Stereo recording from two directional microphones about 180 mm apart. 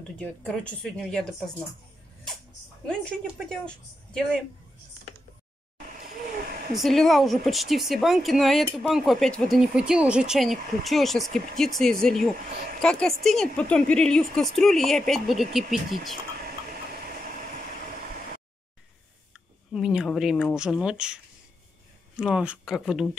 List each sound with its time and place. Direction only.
0.2 s speech: 5° left (ahead or behind)
3.3 s speech: centre (ahead or behind)
6.7 s speech: centre (ahead or behind)
19.7 s speech: 5° right (ahead or behind)